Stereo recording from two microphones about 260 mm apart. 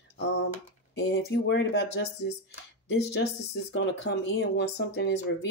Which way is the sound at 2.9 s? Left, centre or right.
Left.